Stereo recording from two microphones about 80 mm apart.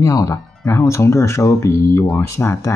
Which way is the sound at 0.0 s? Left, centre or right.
Left.